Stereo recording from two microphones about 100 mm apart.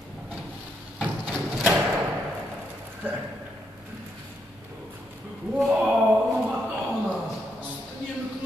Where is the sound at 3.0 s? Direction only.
15° right (ahead or behind).